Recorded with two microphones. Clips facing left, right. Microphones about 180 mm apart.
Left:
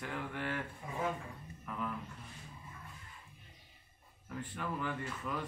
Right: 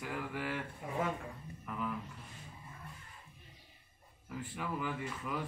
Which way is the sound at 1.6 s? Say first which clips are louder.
Right 1 dB; 5° right (ahead or behind).